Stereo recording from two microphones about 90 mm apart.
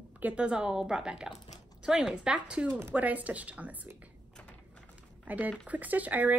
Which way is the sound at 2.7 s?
30° right (ahead or behind).